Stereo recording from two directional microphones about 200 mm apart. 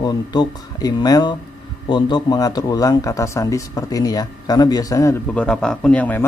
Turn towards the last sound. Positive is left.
turn(degrees=5)  # may be behind; listen again after turning